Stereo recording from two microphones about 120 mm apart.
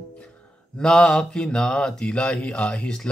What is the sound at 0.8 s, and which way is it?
Speech, 5° left (ahead or behind).